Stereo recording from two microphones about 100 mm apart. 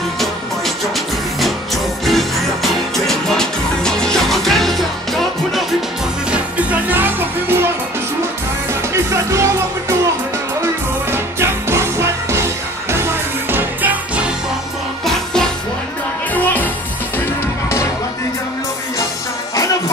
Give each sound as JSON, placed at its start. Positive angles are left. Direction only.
{"t": 2.0, "sound": "music", "side_deg": 0}
{"t": 6.3, "sound": "music", "side_deg": -15}
{"t": 8.9, "sound": "music", "side_deg": -30}
{"t": 11.1, "sound": "music", "side_deg": -25}
{"t": 16.3, "sound": "music", "side_deg": 15}